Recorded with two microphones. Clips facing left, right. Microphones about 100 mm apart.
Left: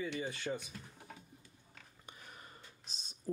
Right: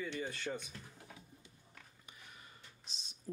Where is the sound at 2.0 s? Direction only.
45° left (ahead or behind).